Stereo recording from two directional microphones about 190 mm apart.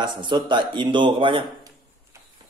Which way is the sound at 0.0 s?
25° right (ahead or behind).